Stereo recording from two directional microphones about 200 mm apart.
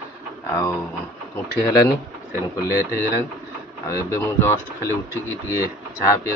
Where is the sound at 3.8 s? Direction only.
15° left (ahead or behind).